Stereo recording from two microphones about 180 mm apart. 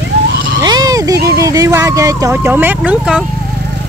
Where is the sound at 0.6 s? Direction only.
20° right (ahead or behind).